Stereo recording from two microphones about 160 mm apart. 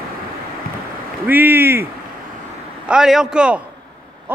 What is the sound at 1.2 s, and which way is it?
Speech, 10° right (ahead or behind).